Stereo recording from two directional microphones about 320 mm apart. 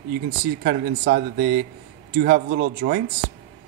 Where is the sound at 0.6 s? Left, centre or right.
Right.